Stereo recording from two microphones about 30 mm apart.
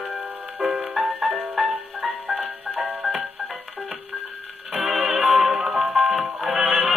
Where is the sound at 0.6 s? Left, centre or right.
Right.